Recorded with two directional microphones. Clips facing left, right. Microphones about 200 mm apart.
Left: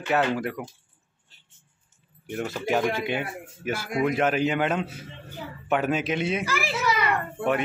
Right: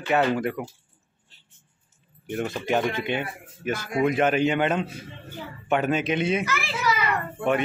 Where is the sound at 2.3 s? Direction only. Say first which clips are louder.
Right 1 dB; centre (ahead or behind).